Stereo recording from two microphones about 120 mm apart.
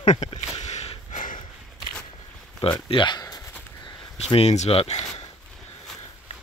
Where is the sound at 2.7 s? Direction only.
40° left (ahead or behind).